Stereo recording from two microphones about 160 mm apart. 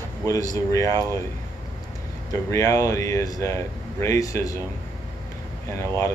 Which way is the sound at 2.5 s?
20° left (ahead or behind).